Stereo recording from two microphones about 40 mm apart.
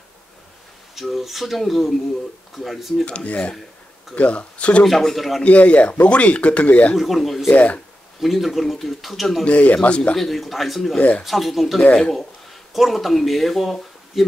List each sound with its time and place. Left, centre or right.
0.9 s speech: centre
3.3 s speech: left
4.8 s speech: centre
5.4 s speech: left
7.0 s speech: centre
7.4 s speech: left
8.2 s speech: centre
9.4 s speech: left
10.1 s speech: centre